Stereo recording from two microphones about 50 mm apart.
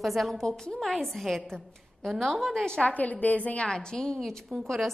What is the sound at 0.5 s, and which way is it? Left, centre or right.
A woman's voice, centre.